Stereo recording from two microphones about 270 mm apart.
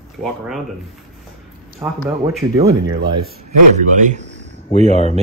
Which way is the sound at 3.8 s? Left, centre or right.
Right.